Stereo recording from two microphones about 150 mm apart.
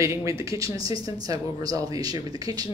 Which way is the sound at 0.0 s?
20° right (ahead or behind).